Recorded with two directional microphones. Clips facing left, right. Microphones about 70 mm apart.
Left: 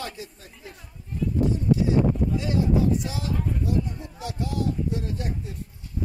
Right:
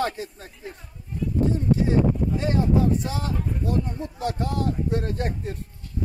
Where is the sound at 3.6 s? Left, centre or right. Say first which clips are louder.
Right 1 dB; right.